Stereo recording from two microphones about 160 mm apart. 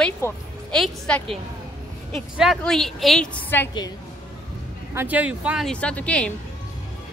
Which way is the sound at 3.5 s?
15° left (ahead or behind).